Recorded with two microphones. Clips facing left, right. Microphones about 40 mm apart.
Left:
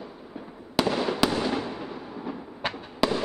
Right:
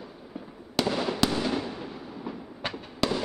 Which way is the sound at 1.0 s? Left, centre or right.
Centre.